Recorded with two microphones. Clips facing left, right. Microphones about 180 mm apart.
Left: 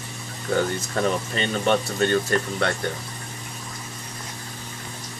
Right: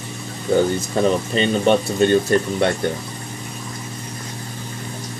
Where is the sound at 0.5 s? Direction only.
20° right (ahead or behind).